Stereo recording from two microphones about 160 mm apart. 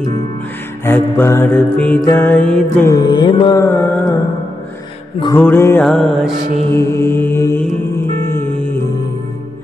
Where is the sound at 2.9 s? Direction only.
25° left (ahead or behind).